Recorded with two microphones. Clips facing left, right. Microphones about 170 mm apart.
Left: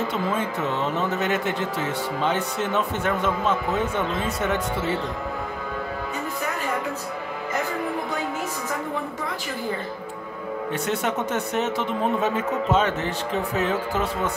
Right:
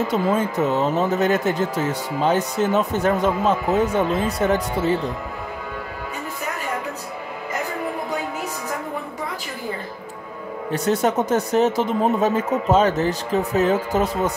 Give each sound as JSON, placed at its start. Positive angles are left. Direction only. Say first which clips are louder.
{"t": 0.1, "sound": "speech", "louder": "right 5 dB", "side_deg": -40}
{"t": 10.7, "sound": "speech", "louder": "right 7 dB", "side_deg": -40}